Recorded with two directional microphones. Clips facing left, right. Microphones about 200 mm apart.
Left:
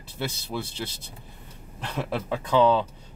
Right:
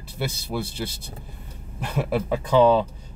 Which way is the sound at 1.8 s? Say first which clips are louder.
Right 5 dB; 10° right (ahead or behind).